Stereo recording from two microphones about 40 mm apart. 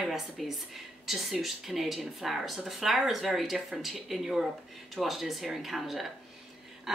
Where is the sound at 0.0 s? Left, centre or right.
Centre.